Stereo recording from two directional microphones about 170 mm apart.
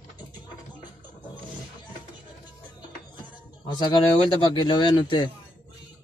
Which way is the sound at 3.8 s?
25° left (ahead or behind).